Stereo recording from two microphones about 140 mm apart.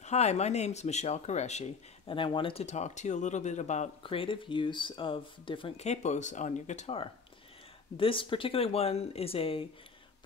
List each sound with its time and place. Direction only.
0.0 s speech: 50° left (ahead or behind)
2.0 s speech: 40° left (ahead or behind)
2.6 s speech: 55° left (ahead or behind)
4.0 s speech: 40° left (ahead or behind)
5.9 s speech: 55° left (ahead or behind)
8.0 s speech: 40° left (ahead or behind)